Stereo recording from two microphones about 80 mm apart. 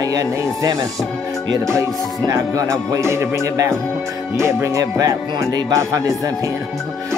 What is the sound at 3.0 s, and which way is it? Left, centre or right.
Speech, right.